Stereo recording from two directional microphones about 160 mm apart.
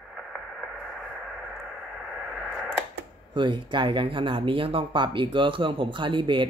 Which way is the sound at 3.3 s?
30° right (ahead or behind).